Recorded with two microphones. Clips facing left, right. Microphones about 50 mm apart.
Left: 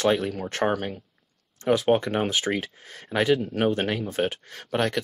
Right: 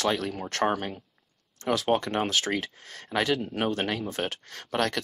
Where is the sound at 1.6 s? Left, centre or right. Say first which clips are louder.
Left 4 dB; centre.